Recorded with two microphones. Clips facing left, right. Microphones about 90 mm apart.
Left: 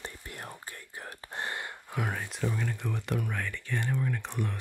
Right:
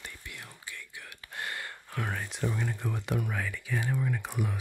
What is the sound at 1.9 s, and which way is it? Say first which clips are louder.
Speech: left 1 dB; 5° left (ahead or behind).